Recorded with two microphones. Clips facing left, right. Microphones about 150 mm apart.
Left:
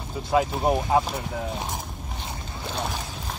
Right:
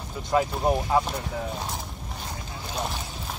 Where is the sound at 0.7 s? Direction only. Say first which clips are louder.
Even; 20° left (ahead or behind).